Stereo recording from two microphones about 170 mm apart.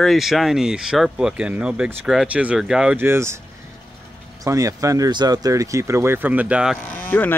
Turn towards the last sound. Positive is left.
turn(degrees=10)  # may be behind; listen again after turning